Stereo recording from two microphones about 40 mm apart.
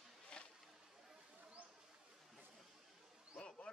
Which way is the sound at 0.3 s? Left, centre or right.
Left.